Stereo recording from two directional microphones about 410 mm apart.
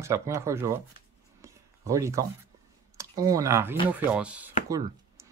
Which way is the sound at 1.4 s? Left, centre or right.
Centre.